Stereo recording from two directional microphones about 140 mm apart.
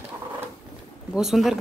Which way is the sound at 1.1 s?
5° right (ahead or behind).